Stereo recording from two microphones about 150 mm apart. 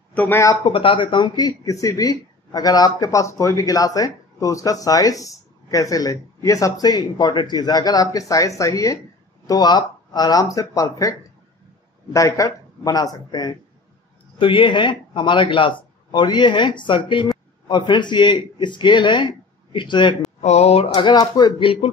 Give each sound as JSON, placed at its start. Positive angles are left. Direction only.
{"t": 0.1, "sound": "speech", "side_deg": 15}
{"t": 0.7, "sound": "speech", "side_deg": 35}
{"t": 20.3, "sound": "speech", "side_deg": 50}
{"t": 20.9, "sound": "speech", "side_deg": 30}